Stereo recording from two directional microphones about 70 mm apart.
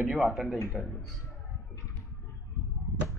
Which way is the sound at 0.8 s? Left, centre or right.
Left.